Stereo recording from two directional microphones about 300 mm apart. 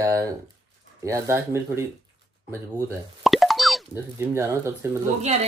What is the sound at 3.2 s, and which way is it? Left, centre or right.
Plop, centre.